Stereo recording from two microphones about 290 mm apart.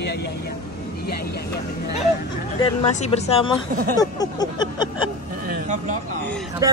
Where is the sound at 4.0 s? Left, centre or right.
Centre.